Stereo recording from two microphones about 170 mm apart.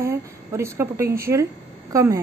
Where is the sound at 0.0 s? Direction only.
15° right (ahead or behind).